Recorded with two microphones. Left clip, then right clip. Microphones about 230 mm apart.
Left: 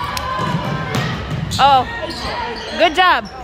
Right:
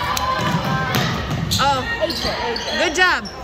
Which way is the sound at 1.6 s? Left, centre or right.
Centre.